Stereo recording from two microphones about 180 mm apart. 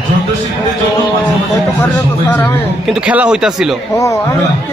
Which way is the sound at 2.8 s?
5° right (ahead or behind).